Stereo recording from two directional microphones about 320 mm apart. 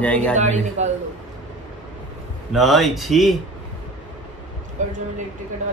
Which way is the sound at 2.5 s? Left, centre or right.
Centre.